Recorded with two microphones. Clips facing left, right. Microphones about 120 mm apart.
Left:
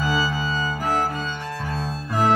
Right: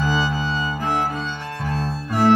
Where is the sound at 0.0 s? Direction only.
Centre (ahead or behind).